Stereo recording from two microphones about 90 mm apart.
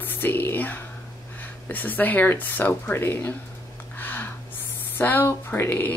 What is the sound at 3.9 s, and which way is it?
Gasp, 20° left (ahead or behind).